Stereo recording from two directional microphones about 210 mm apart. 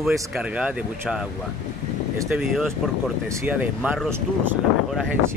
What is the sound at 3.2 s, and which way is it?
Speech, 10° right (ahead or behind).